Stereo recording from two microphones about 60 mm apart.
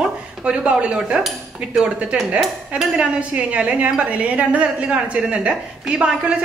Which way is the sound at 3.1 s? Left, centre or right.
Right.